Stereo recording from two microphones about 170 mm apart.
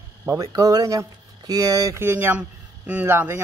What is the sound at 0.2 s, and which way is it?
Speech, 20° right (ahead or behind).